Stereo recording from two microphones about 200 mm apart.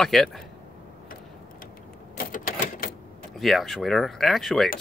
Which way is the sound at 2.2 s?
45° left (ahead or behind).